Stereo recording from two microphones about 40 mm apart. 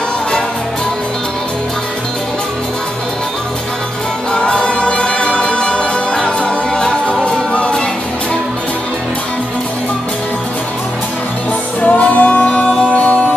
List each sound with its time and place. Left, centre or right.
4.3 s music: left
11.8 s music: left
12.9 s music: left